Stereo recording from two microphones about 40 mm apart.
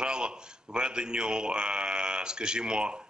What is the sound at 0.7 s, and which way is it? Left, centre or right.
A man's voice, right.